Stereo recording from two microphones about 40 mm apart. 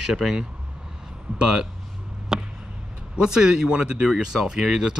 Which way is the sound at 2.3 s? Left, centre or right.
Centre.